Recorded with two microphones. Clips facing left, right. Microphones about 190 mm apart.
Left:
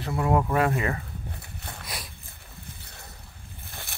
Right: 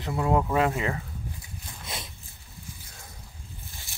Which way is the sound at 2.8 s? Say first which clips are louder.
Left 2 dB; 65° left (ahead or behind).